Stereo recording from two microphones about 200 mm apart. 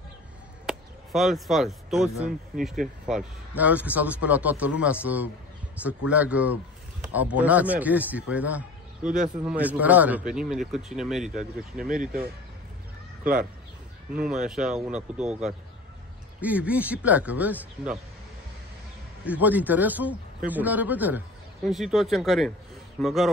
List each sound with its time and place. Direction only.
0.7 s chop: centre (ahead or behind)
2.2 s a man's voice: centre (ahead or behind)
11.9 s speech: 40° right (ahead or behind)
13.2 s speech: 45° right (ahead or behind)
14.1 s a man's voice: 5° right (ahead or behind)
19.2 s a man's voice: 10° right (ahead or behind)